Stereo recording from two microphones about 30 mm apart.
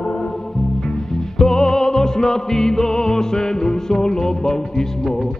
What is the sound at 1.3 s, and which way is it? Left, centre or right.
Music, centre.